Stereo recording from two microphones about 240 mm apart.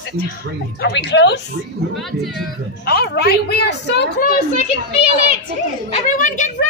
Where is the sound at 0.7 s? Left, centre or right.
Left.